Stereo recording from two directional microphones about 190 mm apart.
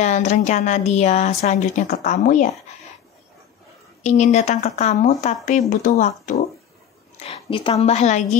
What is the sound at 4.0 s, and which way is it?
A woman's voice, 35° left (ahead or behind).